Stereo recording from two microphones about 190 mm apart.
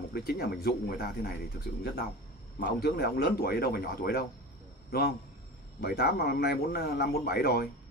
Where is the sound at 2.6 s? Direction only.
55° left (ahead or behind).